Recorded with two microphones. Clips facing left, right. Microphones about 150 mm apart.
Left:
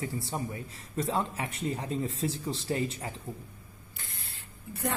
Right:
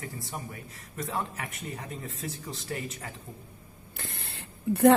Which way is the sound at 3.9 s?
65° right (ahead or behind).